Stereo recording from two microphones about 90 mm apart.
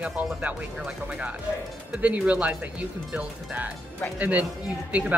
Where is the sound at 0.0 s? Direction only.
15° right (ahead or behind).